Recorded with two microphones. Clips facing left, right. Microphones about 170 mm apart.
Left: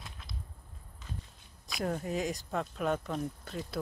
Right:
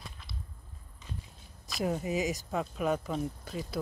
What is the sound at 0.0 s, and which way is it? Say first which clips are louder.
Whip: right 1 dB; centre (ahead or behind).